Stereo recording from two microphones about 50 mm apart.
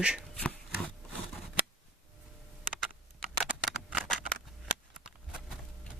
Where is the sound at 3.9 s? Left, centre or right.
Centre.